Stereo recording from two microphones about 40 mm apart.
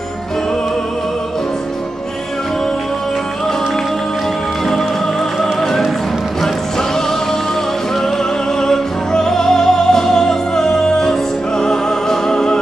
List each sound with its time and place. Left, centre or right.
5.4 s music: centre
8.5 s music: centre